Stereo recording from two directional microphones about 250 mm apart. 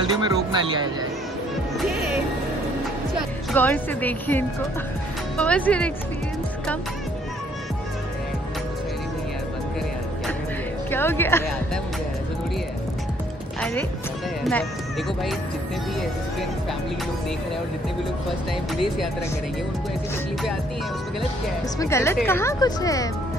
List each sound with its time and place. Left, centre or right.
0.1 s speech: centre
3.2 s speech: centre
10.9 s speech: centre
14.4 s speech: centre
21.7 s speech: centre